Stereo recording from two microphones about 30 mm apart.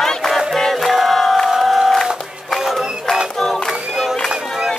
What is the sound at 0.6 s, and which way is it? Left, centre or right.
Music, centre.